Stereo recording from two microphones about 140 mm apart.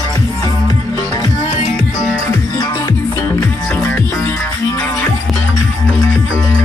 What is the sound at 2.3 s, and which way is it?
Music, 30° left (ahead or behind).